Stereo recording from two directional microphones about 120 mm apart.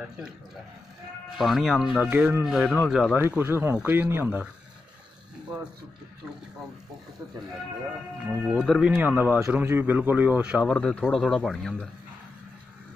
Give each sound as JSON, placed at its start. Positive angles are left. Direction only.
{"t": 1.4, "sound": "a man's voice", "side_deg": 0}
{"t": 3.2, "sound": "speech", "side_deg": -15}
{"t": 8.3, "sound": "speech", "side_deg": -10}
{"t": 10.7, "sound": "a man's voice", "side_deg": 5}